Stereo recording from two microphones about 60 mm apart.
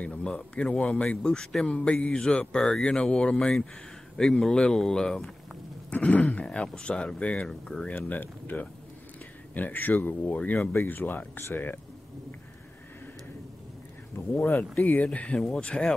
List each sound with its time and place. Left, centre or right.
0.0 s speech: centre
5.9 s speech: left
7.9 s speech: left
14.3 s speech: left
15.0 s speech: centre